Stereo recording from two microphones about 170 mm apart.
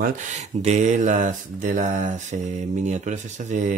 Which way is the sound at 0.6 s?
40° right (ahead or behind).